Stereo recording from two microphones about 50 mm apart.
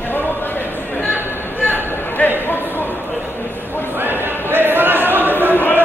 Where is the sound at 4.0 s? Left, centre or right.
Right.